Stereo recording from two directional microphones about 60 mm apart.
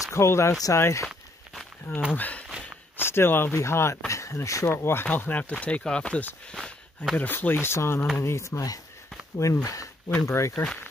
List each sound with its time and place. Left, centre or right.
0.0 s speech: left
1.0 s walk: centre
2.1 s speech: left
3.0 s speech: left
4.1 s speech: left
4.6 s speech: left
5.0 s speech: left
7.2 s speech: left
10.2 s speech: left